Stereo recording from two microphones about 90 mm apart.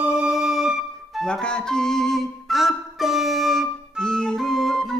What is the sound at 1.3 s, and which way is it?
Music, 10° left (ahead or behind).